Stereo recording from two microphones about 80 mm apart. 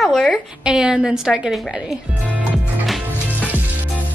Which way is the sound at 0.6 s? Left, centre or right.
Centre.